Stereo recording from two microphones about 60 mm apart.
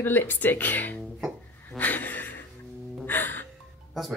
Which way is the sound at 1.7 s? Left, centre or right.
Left.